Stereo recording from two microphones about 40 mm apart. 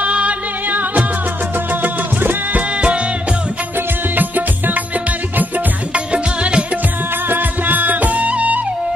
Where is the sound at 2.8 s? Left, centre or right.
Right.